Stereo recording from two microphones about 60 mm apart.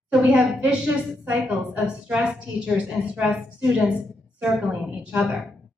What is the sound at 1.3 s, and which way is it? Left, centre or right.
A woman's voice, centre.